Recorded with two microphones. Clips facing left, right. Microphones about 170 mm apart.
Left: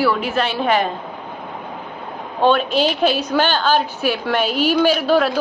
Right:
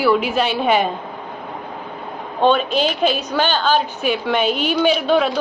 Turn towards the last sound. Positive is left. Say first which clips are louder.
# even
turn(degrees=5)  # may be behind; listen again after turning